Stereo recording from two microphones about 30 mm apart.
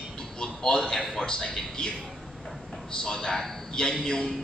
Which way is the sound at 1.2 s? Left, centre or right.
Left.